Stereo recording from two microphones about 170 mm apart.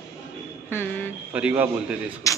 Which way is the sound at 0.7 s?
10° left (ahead or behind).